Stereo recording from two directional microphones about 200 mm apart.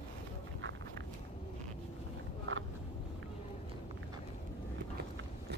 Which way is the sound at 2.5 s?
85° right.